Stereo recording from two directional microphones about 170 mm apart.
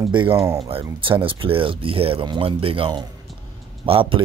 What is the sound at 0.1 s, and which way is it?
Speech, 30° right (ahead or behind).